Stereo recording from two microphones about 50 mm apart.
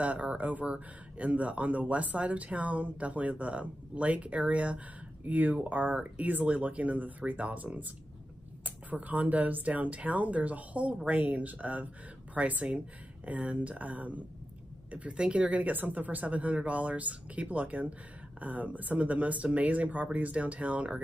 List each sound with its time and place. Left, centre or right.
0.0 s speech: right